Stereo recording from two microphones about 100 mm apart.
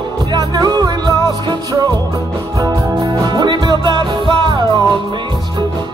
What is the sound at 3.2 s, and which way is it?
Music, 45° right (ahead or behind).